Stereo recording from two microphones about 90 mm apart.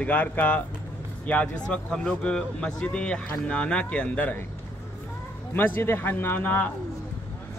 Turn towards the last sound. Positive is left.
turn(degrees=20)  # may be behind; listen again after turning